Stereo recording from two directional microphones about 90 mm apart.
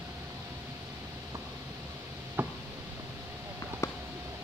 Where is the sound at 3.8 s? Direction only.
40° left (ahead or behind).